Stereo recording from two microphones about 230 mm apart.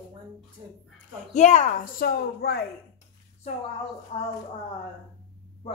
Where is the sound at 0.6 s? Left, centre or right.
Centre.